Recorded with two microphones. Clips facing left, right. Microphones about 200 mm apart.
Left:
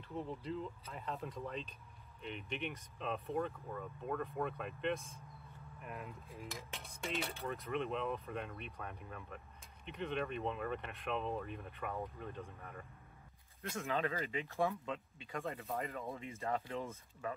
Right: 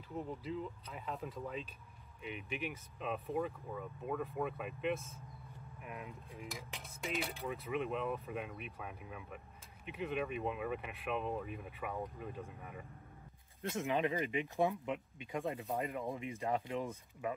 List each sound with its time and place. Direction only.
0.1 s cutlery: centre (ahead or behind)
13.6 s speech: 20° right (ahead or behind)